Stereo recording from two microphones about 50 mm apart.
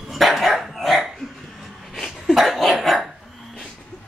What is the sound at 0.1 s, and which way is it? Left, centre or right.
Dog, centre.